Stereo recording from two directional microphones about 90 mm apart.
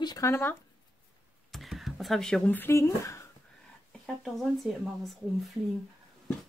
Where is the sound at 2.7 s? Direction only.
35° left (ahead or behind).